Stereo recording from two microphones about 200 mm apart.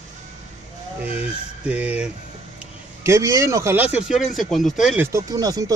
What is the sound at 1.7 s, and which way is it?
Speech, 5° right (ahead or behind).